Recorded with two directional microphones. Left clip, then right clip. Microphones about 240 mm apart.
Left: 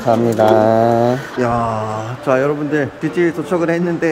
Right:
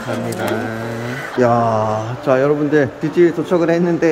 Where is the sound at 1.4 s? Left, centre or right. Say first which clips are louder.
Right 5 dB; centre.